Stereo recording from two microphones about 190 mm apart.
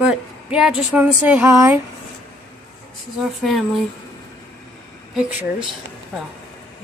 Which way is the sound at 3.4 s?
Centre (ahead or behind).